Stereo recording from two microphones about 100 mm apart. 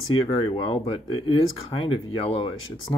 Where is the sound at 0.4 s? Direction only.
65° left (ahead or behind).